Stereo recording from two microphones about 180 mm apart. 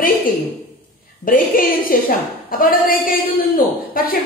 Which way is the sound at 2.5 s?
50° left (ahead or behind).